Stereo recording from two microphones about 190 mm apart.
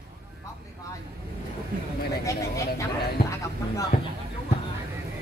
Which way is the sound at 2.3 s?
15° left (ahead or behind).